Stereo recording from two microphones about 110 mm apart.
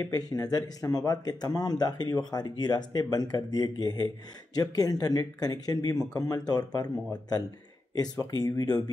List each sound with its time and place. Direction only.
0.0 s speech: 35° left (ahead or behind)
7.9 s speech: 35° left (ahead or behind)